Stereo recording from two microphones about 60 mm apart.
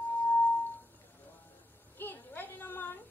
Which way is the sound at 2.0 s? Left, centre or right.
Left.